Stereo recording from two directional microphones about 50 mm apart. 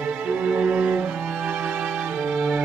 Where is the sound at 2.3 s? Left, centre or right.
Centre.